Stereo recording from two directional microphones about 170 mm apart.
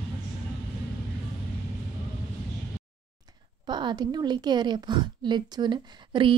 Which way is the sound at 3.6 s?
25° right (ahead or behind).